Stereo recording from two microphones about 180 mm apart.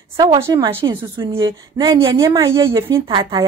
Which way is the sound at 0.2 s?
20° right (ahead or behind).